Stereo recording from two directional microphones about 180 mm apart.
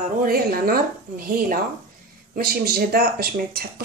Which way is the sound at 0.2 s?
55° right (ahead or behind).